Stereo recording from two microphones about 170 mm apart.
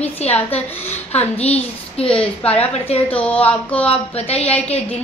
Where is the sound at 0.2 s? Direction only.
40° left (ahead or behind).